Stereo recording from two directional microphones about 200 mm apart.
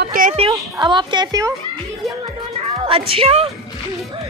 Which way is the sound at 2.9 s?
25° right (ahead or behind).